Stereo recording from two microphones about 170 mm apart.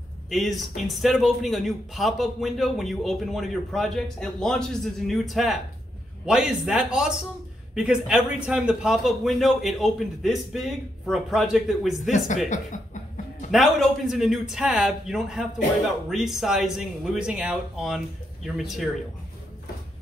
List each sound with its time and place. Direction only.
0.3 s a man's voice: centre (ahead or behind)
12.7 s chuckle: 50° left (ahead or behind)
13.5 s a man's voice: centre (ahead or behind)